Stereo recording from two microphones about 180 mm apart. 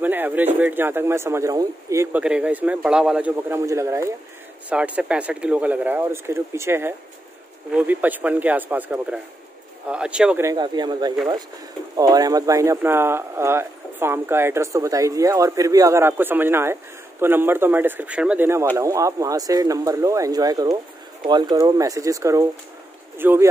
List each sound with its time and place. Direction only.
0.0 s speech: 10° right (ahead or behind)
2.2 s speech: 5° right (ahead or behind)
10.4 s speech: 20° right (ahead or behind)